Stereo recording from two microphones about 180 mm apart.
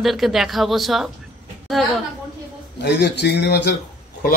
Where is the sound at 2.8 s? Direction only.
70° left (ahead or behind).